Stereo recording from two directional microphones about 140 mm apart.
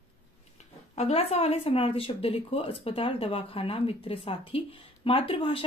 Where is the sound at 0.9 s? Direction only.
50° left (ahead or behind).